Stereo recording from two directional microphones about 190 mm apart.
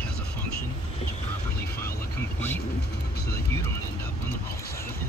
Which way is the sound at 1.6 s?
55° left (ahead or behind).